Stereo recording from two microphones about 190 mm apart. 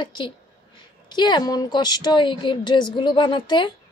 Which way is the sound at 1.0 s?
25° left (ahead or behind).